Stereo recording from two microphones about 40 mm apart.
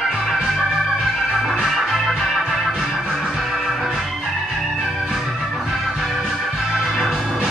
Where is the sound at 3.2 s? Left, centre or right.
Centre.